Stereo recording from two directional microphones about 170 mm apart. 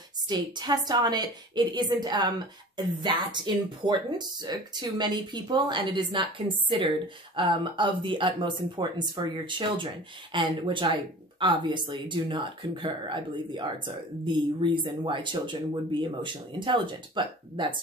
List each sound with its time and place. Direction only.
0.3 s speech: 25° right (ahead or behind)